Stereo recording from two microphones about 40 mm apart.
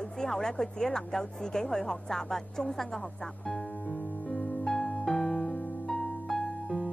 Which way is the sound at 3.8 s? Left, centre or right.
Left.